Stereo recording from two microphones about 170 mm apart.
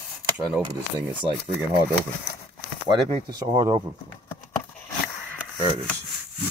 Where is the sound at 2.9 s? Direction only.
25° right (ahead or behind).